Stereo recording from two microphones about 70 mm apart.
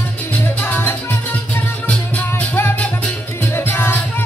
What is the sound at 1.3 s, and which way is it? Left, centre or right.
Music, left.